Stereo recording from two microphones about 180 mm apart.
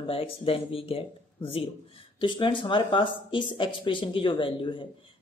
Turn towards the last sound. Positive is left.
turn(degrees=30)  # may be behind; listen again after turning